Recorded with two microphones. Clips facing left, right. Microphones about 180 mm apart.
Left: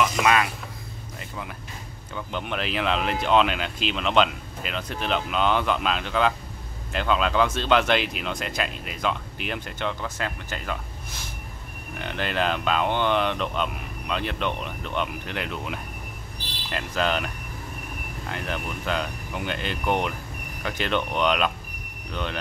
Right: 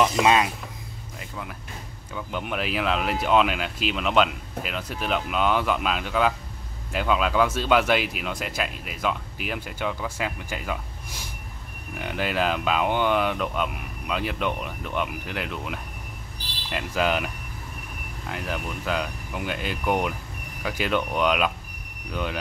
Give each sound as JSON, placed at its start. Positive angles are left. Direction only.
{"t": 0.0, "sound": "speech", "side_deg": -25}
{"t": 2.1, "sound": "speech", "side_deg": -5}
{"t": 18.3, "sound": "speech", "side_deg": -5}